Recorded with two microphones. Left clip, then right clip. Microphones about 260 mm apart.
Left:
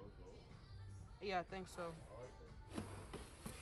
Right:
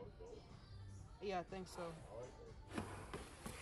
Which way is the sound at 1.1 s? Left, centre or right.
Centre.